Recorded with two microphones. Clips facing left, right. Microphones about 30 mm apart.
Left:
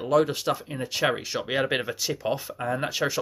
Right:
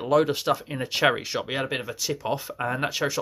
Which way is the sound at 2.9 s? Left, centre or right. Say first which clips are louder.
Even; centre.